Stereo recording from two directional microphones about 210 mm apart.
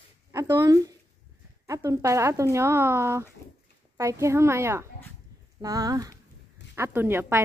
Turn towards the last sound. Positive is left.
turn(degrees=-10)  # may be behind; listen again after turning